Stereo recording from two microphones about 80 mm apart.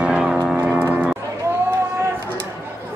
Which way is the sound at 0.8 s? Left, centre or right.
Right.